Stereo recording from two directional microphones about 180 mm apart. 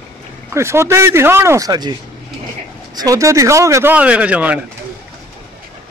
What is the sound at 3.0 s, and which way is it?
Speech, 20° right (ahead or behind).